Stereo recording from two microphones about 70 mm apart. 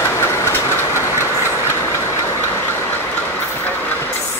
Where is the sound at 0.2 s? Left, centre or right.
Left.